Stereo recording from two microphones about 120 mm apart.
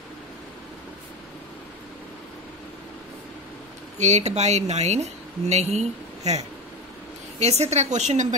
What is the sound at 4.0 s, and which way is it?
Speech, 70° right (ahead or behind).